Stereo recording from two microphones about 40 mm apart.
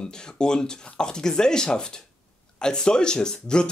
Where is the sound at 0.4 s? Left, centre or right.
Centre.